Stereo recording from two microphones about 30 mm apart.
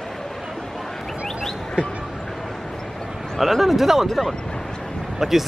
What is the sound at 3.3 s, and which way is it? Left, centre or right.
Speech, centre.